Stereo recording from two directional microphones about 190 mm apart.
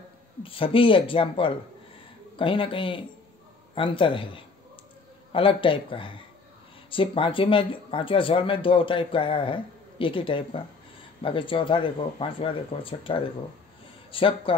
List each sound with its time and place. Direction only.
0.4 s speech: 30° left (ahead or behind)